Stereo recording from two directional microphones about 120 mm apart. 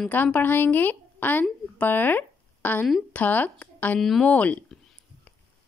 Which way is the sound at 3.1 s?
15° left (ahead or behind).